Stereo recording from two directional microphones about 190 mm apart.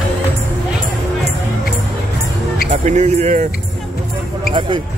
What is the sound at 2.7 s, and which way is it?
Music, 40° right (ahead or behind).